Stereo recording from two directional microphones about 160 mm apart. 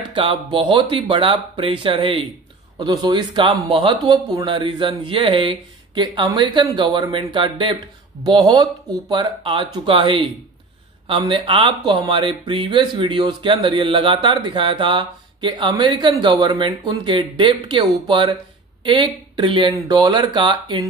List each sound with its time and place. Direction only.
0.1 s speech: 35° right (ahead or behind)
2.8 s speech: 25° right (ahead or behind)